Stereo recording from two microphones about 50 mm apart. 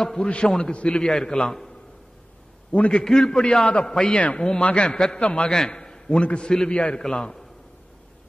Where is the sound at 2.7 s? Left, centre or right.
Left.